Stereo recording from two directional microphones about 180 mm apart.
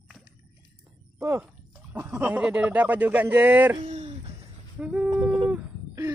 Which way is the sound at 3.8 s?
40° right (ahead or behind).